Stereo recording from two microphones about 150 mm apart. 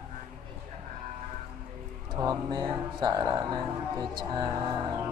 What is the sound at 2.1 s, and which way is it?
Speech, 30° right (ahead or behind).